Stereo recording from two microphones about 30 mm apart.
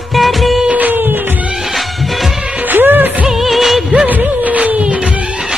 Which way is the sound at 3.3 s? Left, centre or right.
Centre.